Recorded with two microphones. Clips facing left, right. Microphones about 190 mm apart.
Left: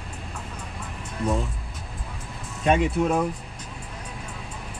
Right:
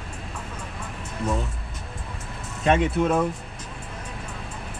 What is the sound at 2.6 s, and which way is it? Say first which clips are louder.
Speech: even; centre (ahead or behind).